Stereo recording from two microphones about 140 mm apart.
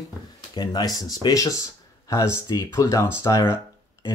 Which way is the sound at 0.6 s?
30° left (ahead or behind).